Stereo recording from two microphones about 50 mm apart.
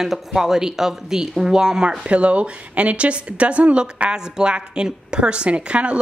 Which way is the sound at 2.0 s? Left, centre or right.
Right.